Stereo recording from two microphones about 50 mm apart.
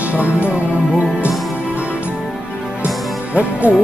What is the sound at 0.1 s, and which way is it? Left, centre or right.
Speech, right.